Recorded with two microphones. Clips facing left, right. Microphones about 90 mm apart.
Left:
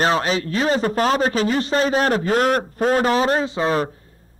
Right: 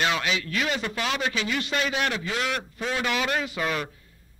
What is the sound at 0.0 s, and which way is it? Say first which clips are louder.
Speech: left 7 dB; 35° left (ahead or behind).